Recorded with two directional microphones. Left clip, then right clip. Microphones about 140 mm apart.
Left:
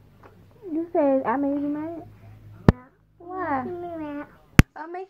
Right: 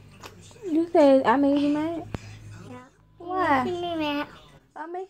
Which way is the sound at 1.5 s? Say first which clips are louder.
Right 4 dB; 20° right (ahead or behind).